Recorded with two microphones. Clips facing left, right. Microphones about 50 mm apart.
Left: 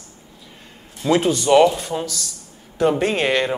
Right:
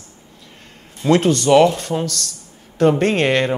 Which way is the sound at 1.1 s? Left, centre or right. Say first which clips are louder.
Right 3 dB; right.